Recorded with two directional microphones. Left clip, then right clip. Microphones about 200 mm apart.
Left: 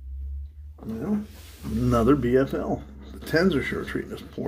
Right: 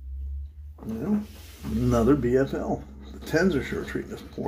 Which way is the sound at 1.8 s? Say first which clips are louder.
Left 1 dB; 10° left (ahead or behind).